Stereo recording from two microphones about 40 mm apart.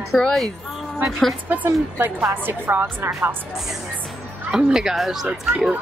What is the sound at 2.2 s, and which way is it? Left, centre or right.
A woman's voice, right.